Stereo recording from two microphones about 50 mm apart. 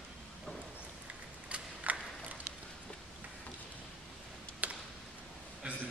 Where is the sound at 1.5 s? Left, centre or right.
Right.